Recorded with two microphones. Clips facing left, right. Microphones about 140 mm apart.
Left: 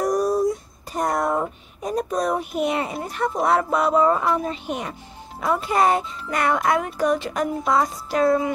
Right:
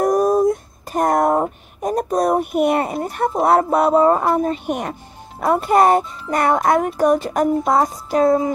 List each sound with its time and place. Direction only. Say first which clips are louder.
0.0 s a sound: right 5 dB; 50° right (ahead or behind)
3.0 s a child's voice: right 4 dB; 50° right (ahead or behind)
3.8 s a child's voice: right 4 dB; 40° right (ahead or behind)